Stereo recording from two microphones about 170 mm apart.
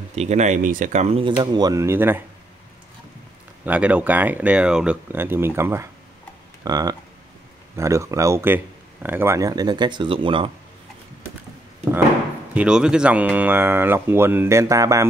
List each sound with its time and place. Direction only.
0.1 s speech: 40° right (ahead or behind)
1.4 s speech: 25° right (ahead or behind)
3.6 s speech: 10° right (ahead or behind); by 10.5 s 30° right (ahead or behind)
12.5 s speech: 5° right (ahead or behind)